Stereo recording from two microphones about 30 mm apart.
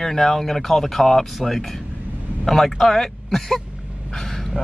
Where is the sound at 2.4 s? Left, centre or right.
Centre.